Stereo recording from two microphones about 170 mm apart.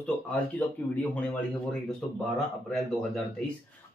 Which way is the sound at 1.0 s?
10° left (ahead or behind).